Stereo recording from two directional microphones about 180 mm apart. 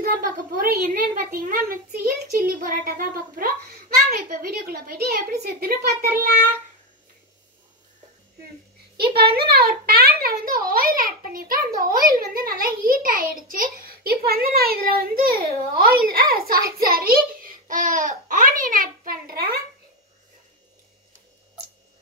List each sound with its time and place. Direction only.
0.0 s a child's voice: 55° right (ahead or behind)
8.9 s a child's voice: 60° right (ahead or behind)